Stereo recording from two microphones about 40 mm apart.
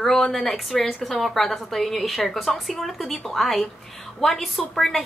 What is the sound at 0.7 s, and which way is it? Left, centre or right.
Speech, centre.